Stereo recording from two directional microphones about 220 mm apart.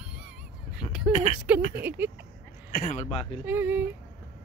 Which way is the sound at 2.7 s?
35° left (ahead or behind).